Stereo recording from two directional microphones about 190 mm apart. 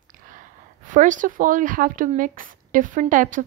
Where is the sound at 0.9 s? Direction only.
40° right (ahead or behind).